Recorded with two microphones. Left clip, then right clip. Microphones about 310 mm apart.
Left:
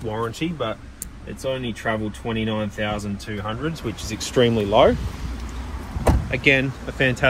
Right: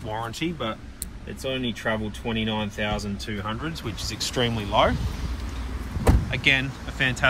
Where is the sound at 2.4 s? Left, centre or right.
Left.